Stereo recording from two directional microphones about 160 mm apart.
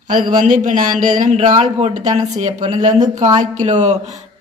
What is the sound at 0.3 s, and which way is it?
Speech, 55° right (ahead or behind).